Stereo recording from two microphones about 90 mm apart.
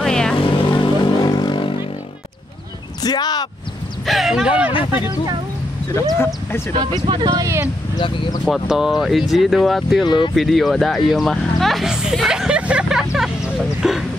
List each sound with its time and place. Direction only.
0.0 s vehicle: 5° left (ahead or behind)
0.4 s vehicle: 60° left (ahead or behind)
3.0 s a sound: 50° left (ahead or behind)
4.0 s a sound: centre (ahead or behind)
6.1 s speech: 25° left (ahead or behind)
7.2 s speech: 35° right (ahead or behind)
8.0 s speech: 70° left (ahead or behind)
8.5 s speech: 5° right (ahead or behind)
10.0 s speech: 60° left (ahead or behind)
10.3 s speech: centre (ahead or behind)
13.1 s chicken: 5° right (ahead or behind)